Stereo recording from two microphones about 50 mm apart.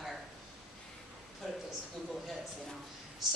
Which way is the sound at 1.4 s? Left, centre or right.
Centre.